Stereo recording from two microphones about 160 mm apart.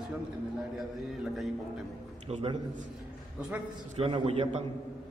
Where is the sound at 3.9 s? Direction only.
40° right (ahead or behind).